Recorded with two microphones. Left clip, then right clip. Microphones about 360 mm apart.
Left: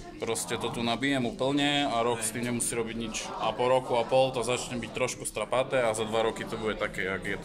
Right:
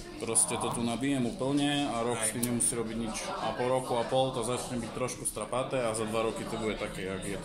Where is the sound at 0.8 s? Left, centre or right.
Left.